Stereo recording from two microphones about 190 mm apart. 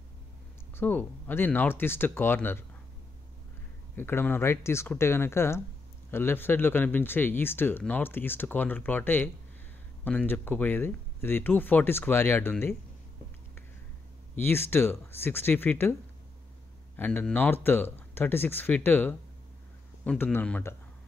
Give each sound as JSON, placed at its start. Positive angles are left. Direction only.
{"t": 0.7, "sound": "speech", "side_deg": 10}
{"t": 3.9, "sound": "speech", "side_deg": 10}
{"t": 14.3, "sound": "speech", "side_deg": 10}